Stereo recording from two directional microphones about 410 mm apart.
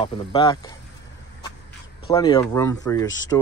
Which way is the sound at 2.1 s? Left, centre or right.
Centre.